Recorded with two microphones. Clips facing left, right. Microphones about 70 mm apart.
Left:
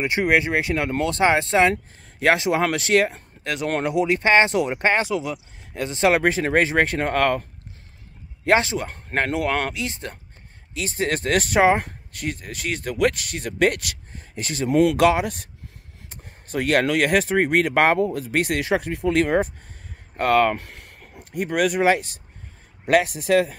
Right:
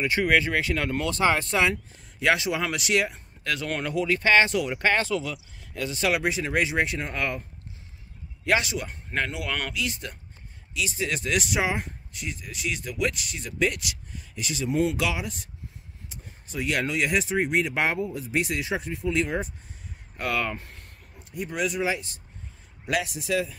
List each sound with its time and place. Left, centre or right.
0.0 s speech: left
3.8 s speech: left
6.2 s speech: left
8.5 s speech: left
8.8 s speech: left
10.7 s speech: left
14.7 s speech: left
15.0 s speech: left
16.1 s a sound: left
16.8 s speech: left
20.5 s speech: left
22.8 s speech: left